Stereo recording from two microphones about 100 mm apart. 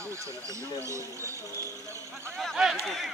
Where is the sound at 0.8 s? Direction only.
30° right (ahead or behind).